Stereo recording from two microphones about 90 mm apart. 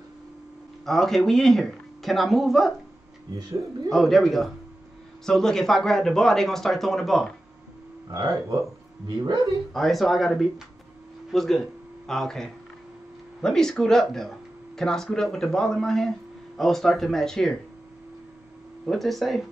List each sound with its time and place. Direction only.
0.8 s speech: 5° left (ahead or behind)
3.9 s speech: centre (ahead or behind)
8.1 s speech: 40° right (ahead or behind)
9.0 s speech: 55° right (ahead or behind)
9.8 s speech: centre (ahead or behind)
18.9 s speech: centre (ahead or behind)